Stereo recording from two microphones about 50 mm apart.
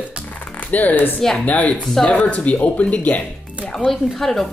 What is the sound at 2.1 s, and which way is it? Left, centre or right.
Speech, left.